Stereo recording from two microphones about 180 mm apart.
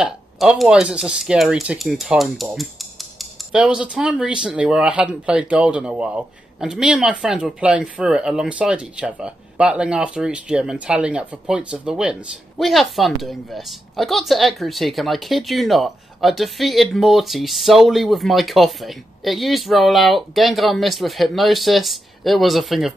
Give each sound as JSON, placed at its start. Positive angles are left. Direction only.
{"t": 0.0, "sound": "speech", "side_deg": -5}